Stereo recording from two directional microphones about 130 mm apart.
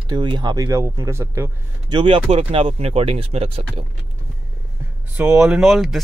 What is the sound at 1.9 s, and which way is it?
Speech, 40° right (ahead or behind).